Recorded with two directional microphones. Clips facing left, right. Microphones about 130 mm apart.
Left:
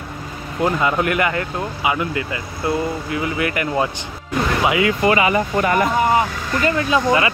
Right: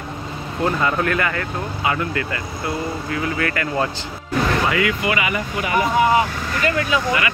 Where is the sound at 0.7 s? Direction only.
15° left (ahead or behind).